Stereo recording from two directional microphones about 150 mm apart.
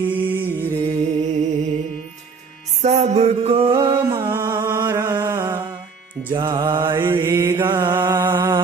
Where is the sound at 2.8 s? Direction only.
45° right (ahead or behind).